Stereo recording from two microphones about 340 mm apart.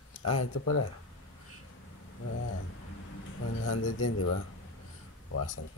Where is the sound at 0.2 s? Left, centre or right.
Left.